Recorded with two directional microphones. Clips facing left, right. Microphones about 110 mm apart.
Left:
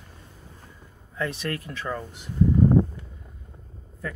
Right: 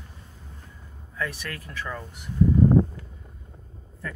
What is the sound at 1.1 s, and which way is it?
Speech, 20° left (ahead or behind).